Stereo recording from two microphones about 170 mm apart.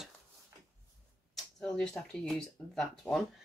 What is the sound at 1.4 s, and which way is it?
Speech, 5° left (ahead or behind).